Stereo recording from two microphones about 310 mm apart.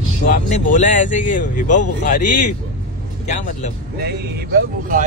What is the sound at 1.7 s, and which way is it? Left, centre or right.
Speech, left.